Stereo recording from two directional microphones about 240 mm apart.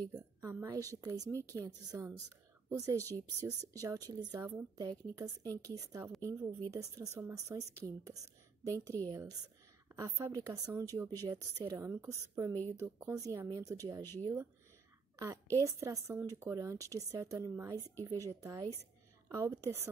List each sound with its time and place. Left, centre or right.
0.1 s a woman's voice: centre
15.5 s a woman's voice: centre